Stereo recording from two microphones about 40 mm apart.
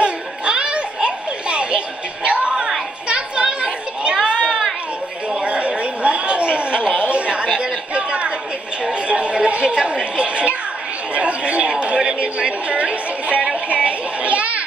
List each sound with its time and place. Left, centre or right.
0.0 s children playing: right
2.2 s music: right
3.1 s children playing: right
5.3 s a sound: right
6.5 s chuckle: right
7.1 s a sound: right
11.8 s music: right
13.7 s children playing: right